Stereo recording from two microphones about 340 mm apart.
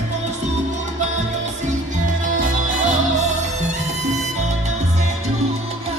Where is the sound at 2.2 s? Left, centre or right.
Right.